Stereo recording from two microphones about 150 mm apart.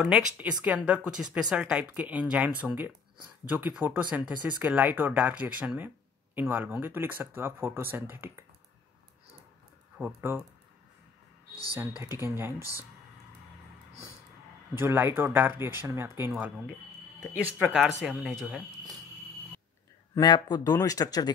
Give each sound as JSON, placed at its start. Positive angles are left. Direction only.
{"t": 0.0, "sound": "speech", "side_deg": -10}
{"t": 9.9, "sound": "speech", "side_deg": -10}
{"t": 11.7, "sound": "speech", "side_deg": -15}
{"t": 14.8, "sound": "speech", "side_deg": -15}
{"t": 20.2, "sound": "speech", "side_deg": 30}